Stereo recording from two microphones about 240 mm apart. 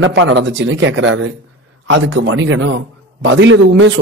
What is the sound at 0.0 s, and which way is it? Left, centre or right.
A man's voice, right.